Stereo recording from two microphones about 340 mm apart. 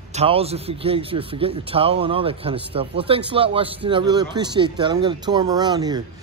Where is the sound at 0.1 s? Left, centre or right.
Centre.